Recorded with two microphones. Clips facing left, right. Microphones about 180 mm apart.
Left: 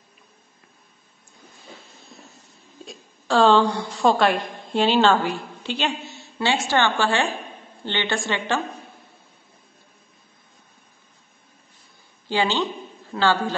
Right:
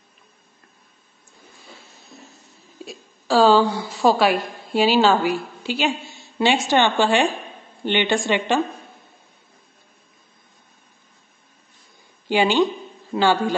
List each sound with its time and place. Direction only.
2.8 s a woman's voice: 5° right (ahead or behind)
12.3 s a woman's voice: 15° right (ahead or behind)